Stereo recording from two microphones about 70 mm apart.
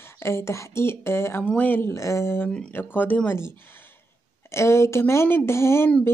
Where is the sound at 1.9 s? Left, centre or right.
Left.